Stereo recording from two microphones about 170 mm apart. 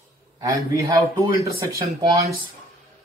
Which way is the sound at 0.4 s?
20° right (ahead or behind).